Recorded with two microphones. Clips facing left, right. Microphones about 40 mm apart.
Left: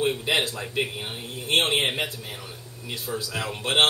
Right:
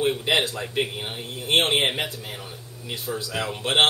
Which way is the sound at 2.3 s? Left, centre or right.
Right.